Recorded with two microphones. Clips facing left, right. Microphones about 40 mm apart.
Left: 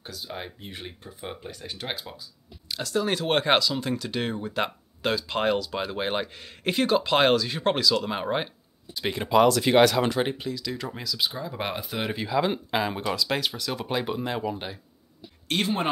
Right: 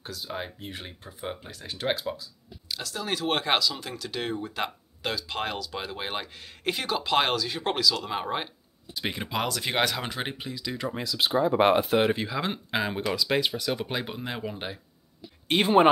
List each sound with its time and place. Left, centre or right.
0.0 s speech: centre
10.3 s speech: centre
11.1 s speech: right
12.0 s speech: centre
15.4 s speech: right